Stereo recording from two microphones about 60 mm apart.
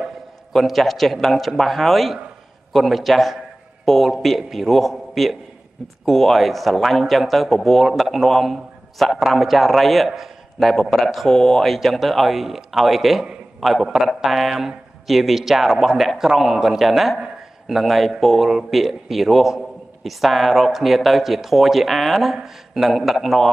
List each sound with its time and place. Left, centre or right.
0.5 s speech: centre